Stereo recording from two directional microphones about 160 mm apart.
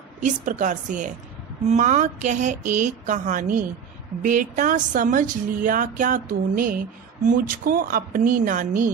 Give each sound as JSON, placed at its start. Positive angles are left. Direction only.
{"t": 0.2, "sound": "speech", "side_deg": -50}